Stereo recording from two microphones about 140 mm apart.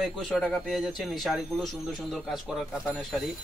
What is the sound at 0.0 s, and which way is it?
Speech, centre (ahead or behind).